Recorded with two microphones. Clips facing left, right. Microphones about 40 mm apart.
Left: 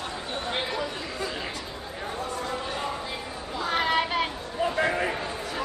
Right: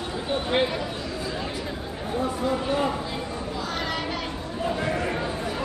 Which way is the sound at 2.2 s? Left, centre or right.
Centre.